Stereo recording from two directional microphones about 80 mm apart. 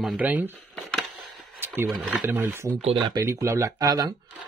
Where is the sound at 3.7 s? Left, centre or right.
Right.